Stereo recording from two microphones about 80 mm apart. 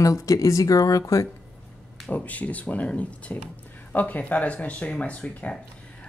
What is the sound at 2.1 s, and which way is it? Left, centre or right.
Speech, centre.